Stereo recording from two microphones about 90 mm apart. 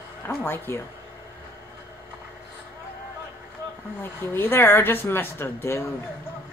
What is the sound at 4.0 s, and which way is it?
Speech, 25° left (ahead or behind).